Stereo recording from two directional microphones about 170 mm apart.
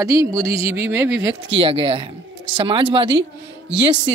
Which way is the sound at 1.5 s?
30° right (ahead or behind).